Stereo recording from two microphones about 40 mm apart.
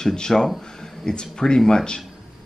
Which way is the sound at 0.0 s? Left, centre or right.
Centre.